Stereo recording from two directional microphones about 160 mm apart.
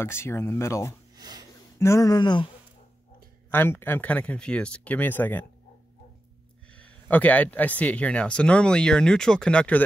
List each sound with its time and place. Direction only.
0.0 s speech: 15° left (ahead or behind)
1.1 s a sound: 25° right (ahead or behind)
1.8 s speech: 20° left (ahead or behind)
3.5 s speech: 15° left (ahead or behind)
6.7 s speech: 10° left (ahead or behind)